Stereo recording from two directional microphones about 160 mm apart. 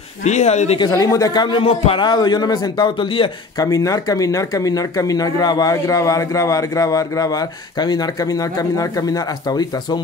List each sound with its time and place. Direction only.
0.2 s speech: 45° left (ahead or behind)
0.7 s speech: 20° left (ahead or behind)